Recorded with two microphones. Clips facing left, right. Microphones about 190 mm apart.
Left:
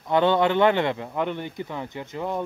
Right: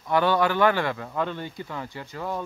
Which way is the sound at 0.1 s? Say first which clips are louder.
Left 2 dB; 20° left (ahead or behind).